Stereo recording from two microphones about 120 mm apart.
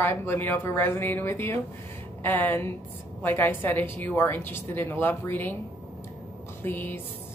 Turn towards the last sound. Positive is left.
turn(degrees=15)  # may be behind; listen again after turning